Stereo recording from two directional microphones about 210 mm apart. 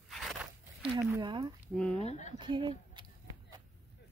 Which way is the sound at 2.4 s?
20° right (ahead or behind).